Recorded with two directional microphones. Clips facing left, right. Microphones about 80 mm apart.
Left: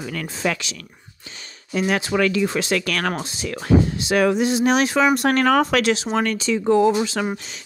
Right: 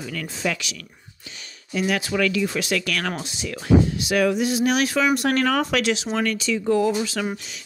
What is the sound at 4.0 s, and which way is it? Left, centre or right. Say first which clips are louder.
Speech: left 2 dB; left.